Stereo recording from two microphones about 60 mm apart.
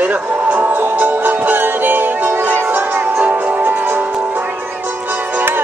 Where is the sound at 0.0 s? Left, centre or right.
Right.